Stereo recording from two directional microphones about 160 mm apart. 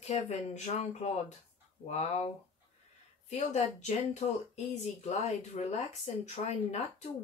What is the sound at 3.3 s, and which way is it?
Speech, 45° left (ahead or behind).